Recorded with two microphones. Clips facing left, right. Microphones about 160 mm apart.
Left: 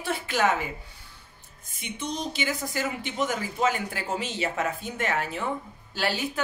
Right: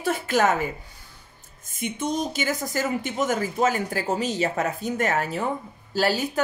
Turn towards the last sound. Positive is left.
turn(degrees=-40)  # may be behind; listen again after turning